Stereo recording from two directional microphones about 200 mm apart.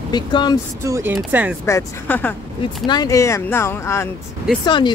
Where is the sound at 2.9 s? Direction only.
15° left (ahead or behind).